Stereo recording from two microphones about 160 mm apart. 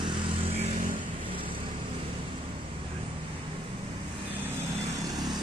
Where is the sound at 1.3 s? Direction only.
30° right (ahead or behind).